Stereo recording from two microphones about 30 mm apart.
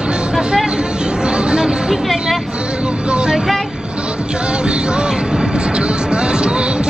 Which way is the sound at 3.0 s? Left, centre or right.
Right.